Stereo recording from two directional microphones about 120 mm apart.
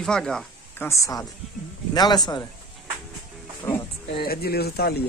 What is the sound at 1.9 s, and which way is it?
Speech, 35° left (ahead or behind).